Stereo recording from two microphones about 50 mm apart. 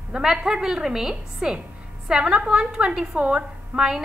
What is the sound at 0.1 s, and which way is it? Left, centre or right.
A woman's voice, centre.